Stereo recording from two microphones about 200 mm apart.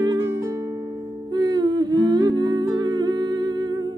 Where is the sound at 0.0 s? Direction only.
20° right (ahead or behind).